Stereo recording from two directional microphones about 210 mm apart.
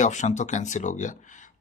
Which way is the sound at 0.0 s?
35° left (ahead or behind).